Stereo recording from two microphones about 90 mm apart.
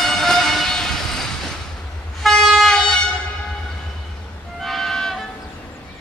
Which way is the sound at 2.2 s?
5° left (ahead or behind).